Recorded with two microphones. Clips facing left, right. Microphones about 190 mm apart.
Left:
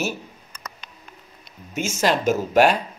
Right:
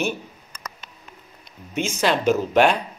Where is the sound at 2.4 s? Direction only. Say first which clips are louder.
Left 1 dB; 5° left (ahead or behind).